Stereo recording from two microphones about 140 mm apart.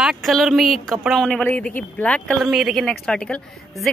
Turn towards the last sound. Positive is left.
turn(degrees=5)  # may be behind; listen again after turning